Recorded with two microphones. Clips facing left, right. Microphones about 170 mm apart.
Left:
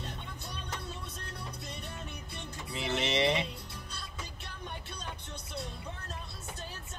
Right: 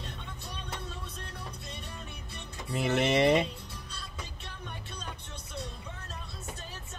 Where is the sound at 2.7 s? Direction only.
50° right (ahead or behind).